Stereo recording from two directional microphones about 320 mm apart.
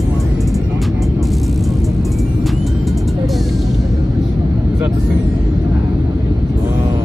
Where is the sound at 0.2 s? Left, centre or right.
Centre.